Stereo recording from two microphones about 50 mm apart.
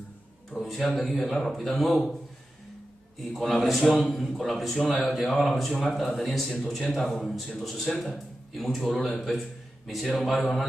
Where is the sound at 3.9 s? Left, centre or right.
Left.